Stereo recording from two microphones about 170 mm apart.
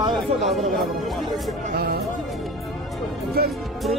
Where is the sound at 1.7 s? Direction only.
65° right (ahead or behind).